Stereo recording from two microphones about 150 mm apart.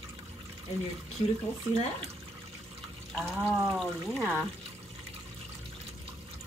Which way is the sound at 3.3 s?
20° right (ahead or behind).